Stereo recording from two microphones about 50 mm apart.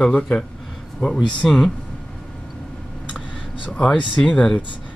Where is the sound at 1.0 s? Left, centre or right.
Left.